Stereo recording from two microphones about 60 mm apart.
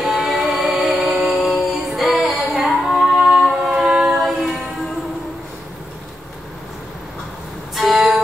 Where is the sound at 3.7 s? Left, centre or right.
Centre.